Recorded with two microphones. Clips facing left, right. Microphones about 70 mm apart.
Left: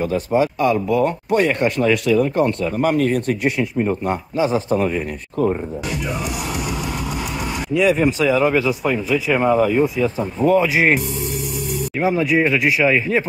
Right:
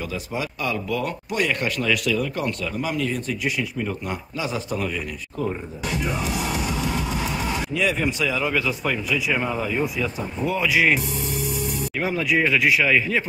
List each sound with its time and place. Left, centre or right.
0.0 s speech: left
2.8 s speech: left
3.5 s speech: left
7.8 s speech: left
9.9 s speech: left
10.7 s speech: left
12.0 s speech: left